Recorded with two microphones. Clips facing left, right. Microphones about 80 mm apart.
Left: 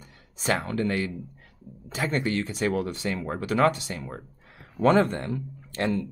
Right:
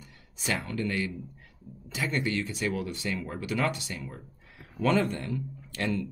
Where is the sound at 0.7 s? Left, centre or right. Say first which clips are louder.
Left 4 dB; left.